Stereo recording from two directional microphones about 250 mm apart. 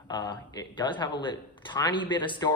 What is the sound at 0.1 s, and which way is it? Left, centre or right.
A man's voice, centre.